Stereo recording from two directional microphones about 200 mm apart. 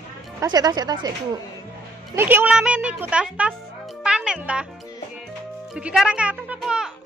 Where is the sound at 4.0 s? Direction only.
5° right (ahead or behind).